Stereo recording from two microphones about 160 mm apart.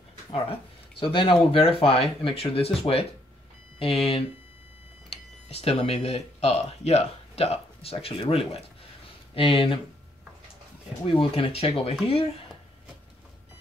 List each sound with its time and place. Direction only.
0.3 s speech: 35° left (ahead or behind)
5.5 s speech: 40° left (ahead or behind)
11.1 s speech: 35° left (ahead or behind)